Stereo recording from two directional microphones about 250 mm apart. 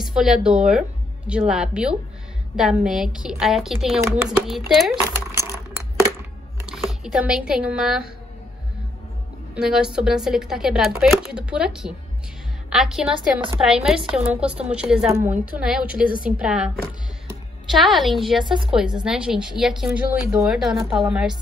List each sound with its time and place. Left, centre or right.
0.0 s a woman's voice: centre
6.6 s speech: centre
9.6 s a woman's voice: centre
17.7 s a woman's voice: centre
18.4 s a woman's voice: centre
18.7 s a woman's voice: centre